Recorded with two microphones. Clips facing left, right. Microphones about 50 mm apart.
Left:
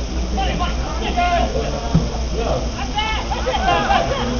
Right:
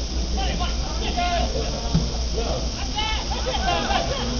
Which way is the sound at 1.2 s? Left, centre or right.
Left.